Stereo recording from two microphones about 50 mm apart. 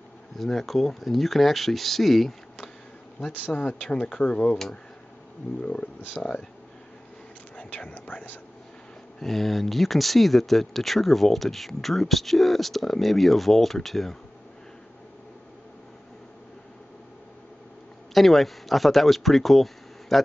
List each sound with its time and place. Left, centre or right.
0.4 s speech: centre
3.3 s speech: left
3.8 s speech: centre
5.6 s speech: left
8.1 s speech: left
9.2 s speech: centre
18.1 s speech: centre